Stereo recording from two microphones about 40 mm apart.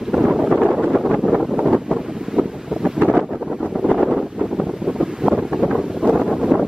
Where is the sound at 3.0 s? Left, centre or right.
Right.